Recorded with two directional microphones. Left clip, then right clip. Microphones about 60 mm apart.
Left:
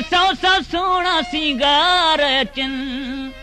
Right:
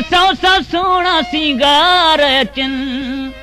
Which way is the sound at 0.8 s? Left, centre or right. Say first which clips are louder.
Right 5 dB; right.